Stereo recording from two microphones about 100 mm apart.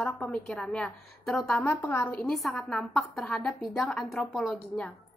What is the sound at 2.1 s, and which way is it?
A woman's voice, 10° left (ahead or behind).